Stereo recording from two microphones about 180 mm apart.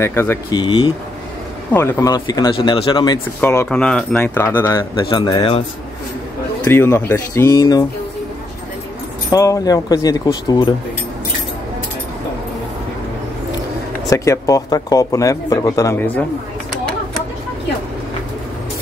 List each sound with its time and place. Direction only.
0.0 s speech: 15° left (ahead or behind)
1.7 s speech: 15° left (ahead or behind)
3.3 s speech: 10° left (ahead or behind)
5.1 s speech: 25° left (ahead or behind)
6.6 s speech: 15° left (ahead or behind)
9.3 s speech: 20° left (ahead or behind)
14.0 s speech: 15° left (ahead or behind)